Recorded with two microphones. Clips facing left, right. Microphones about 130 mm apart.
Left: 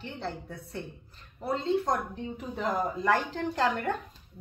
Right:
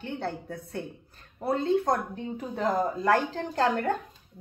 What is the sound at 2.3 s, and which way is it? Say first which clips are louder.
A woman's voice: right 4 dB; 35° right (ahead or behind).